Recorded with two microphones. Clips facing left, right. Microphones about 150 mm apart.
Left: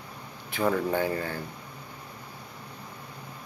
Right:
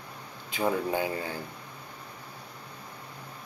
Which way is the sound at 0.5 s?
15° right (ahead or behind).